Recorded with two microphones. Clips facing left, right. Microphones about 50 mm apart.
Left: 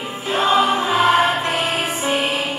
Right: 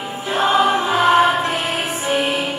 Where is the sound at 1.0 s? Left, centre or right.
Right.